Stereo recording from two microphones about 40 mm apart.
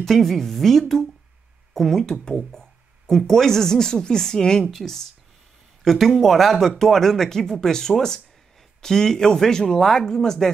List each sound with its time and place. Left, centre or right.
0.0 s speech: centre
2.2 s a sound: centre
3.2 s speech: centre